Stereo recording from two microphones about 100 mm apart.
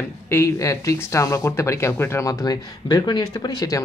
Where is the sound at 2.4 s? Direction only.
45° left (ahead or behind).